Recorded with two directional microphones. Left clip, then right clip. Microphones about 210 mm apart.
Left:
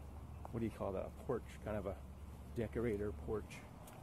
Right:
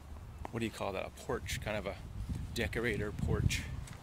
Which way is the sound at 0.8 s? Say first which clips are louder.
Right 4 dB; 15° right (ahead or behind).